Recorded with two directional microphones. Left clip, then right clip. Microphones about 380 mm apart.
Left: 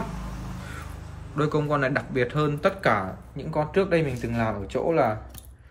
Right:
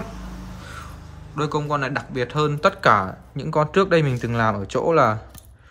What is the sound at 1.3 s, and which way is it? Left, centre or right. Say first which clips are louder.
Speech: right 1 dB; centre.